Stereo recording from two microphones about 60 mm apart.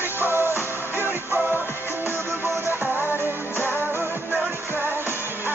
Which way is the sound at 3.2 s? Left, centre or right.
Right.